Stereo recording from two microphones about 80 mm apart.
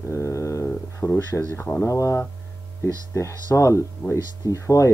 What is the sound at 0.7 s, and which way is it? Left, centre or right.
Speech, left.